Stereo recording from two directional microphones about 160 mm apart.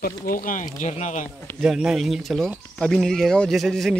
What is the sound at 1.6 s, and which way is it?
Speech, centre (ahead or behind).